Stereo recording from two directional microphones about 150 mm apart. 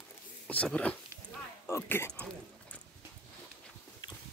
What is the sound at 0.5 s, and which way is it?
Speech, 10° left (ahead or behind).